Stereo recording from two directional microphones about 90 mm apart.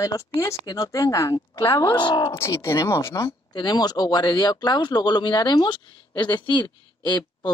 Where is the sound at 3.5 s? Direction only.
50° left (ahead or behind).